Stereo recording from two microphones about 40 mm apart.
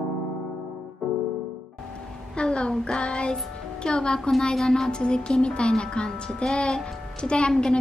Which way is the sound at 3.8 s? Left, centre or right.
Left.